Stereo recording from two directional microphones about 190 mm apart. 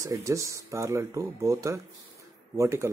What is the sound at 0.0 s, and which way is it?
Speech, 15° right (ahead or behind).